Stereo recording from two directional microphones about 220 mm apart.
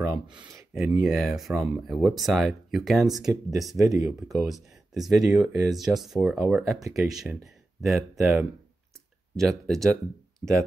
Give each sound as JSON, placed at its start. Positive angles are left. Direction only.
{"t": 0.0, "sound": "a sound", "side_deg": -15}
{"t": 0.4, "sound": "speech", "side_deg": -10}
{"t": 3.8, "sound": "speech", "side_deg": -15}
{"t": 4.4, "sound": "speech", "side_deg": 0}